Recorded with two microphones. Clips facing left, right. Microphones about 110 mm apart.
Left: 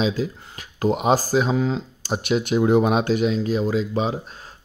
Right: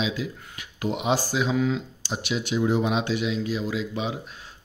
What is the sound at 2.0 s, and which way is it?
Speech, 50° left (ahead or behind).